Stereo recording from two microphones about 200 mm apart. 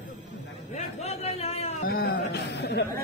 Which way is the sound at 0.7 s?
35° left (ahead or behind).